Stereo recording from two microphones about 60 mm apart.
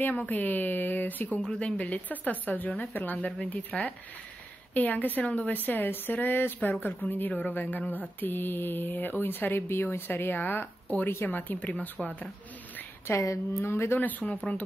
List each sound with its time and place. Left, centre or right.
0.0 s a woman's voice: left
1.4 s a woman's voice: centre
12.0 s speech: centre
13.0 s speech: left
13.9 s a woman's voice: left